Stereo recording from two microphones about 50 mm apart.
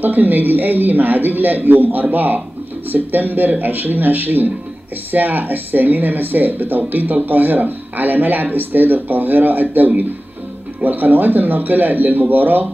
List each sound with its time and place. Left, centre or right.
0.0 s speech: right